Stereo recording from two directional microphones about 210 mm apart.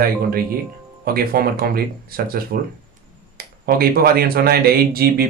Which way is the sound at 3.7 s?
45° right (ahead or behind).